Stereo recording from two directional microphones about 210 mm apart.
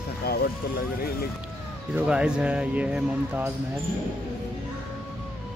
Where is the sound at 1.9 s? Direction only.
5° right (ahead or behind).